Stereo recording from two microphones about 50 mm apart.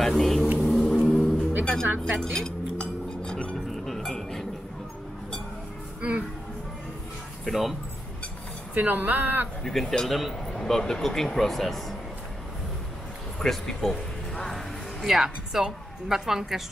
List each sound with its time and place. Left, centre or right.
0.0 s a sound: centre
0.6 s music: centre
1.0 s a sound: centre
1.6 s music: centre
2.1 s speech: centre
2.8 s glass: centre
3.7 s chink: centre
5.9 s music: right
7.4 s speech: centre
8.7 s speech: right
9.6 s speech: centre
13.4 s a woman's voice: centre